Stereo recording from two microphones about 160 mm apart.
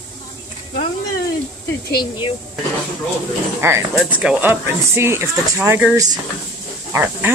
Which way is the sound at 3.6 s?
15° right (ahead or behind).